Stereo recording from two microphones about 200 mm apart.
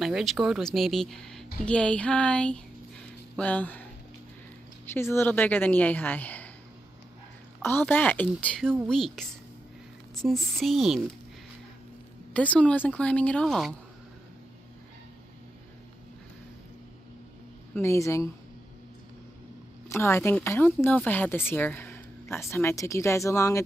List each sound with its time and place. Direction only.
0.0 s speech: centre (ahead or behind)
4.8 s speech: 10° left (ahead or behind)
7.6 s speech: 10° left (ahead or behind)
12.4 s speech: 5° left (ahead or behind)
17.7 s speech: 15° left (ahead or behind)
19.9 s speech: 15° left (ahead or behind)